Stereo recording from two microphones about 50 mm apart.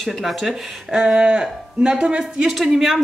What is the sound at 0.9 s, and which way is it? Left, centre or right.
Speech, centre.